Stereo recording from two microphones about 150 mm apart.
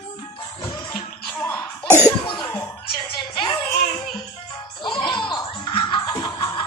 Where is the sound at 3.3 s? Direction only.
30° left (ahead or behind).